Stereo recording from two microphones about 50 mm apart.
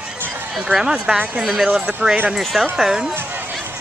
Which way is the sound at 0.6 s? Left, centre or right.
Centre.